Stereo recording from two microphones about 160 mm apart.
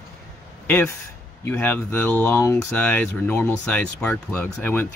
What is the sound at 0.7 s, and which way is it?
Speech, 15° left (ahead or behind).